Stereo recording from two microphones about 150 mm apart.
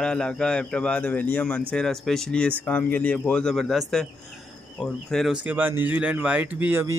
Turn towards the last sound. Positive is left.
turn(degrees=-15)  # may be behind; listen again after turning